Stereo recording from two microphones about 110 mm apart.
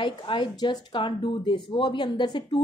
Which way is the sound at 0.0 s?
45° left (ahead or behind).